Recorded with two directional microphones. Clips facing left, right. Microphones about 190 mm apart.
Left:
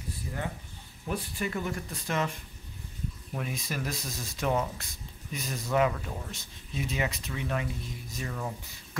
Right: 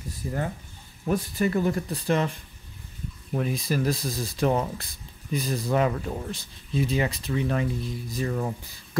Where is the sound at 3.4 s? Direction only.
35° right (ahead or behind).